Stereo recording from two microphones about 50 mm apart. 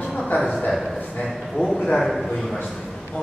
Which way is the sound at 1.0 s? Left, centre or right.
Left.